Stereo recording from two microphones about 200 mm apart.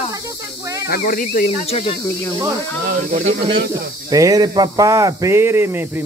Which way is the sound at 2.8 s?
40° right (ahead or behind).